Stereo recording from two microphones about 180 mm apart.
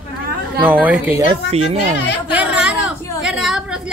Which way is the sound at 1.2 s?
35° right (ahead or behind).